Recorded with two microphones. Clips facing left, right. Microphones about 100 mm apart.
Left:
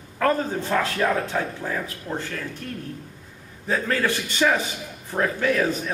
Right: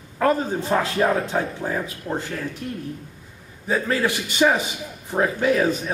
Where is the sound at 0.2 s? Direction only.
15° right (ahead or behind).